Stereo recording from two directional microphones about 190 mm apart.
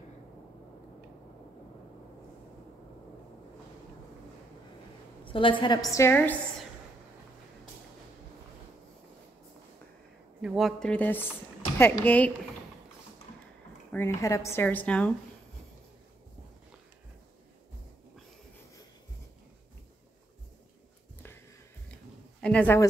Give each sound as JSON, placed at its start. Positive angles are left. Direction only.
{"t": 5.2, "sound": "a woman's voice", "side_deg": 25}
{"t": 10.4, "sound": "a woman's voice", "side_deg": 0}
{"t": 13.9, "sound": "a woman's voice", "side_deg": 15}
{"t": 22.4, "sound": "a woman's voice", "side_deg": 5}